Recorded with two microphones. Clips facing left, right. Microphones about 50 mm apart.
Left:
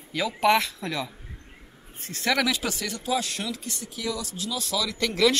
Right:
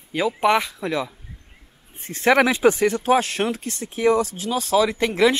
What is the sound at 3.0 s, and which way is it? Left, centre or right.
Speech, right.